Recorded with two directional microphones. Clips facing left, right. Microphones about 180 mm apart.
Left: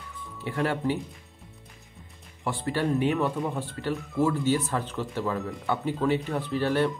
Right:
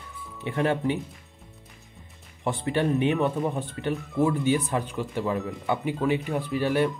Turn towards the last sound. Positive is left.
turn(degrees=-15)  # may be behind; listen again after turning